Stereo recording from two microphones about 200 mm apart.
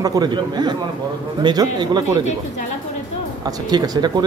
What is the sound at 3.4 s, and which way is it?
Speech, 20° right (ahead or behind).